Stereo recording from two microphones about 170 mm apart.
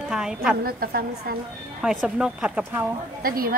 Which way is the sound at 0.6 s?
60° right (ahead or behind).